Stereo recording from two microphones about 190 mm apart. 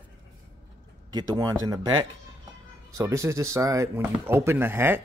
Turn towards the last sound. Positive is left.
turn(degrees=-10)  # may be behind; listen again after turning